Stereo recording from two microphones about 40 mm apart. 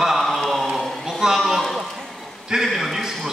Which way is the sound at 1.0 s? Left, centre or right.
Centre.